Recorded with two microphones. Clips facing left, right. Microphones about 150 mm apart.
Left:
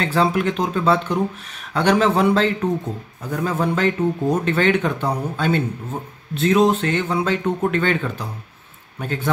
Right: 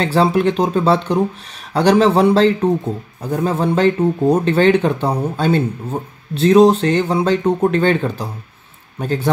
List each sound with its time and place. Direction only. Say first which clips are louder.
0.0 s speech: right 4 dB; 30° right (ahead or behind)